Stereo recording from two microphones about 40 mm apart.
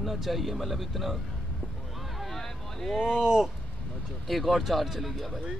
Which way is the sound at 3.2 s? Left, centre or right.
Centre.